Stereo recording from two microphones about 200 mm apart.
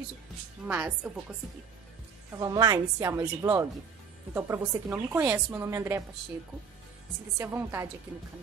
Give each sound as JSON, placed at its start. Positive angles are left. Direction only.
{"t": 0.7, "sound": "a woman's voice", "side_deg": -5}
{"t": 2.3, "sound": "a woman's voice", "side_deg": -20}
{"t": 7.3, "sound": "a woman's voice", "side_deg": -10}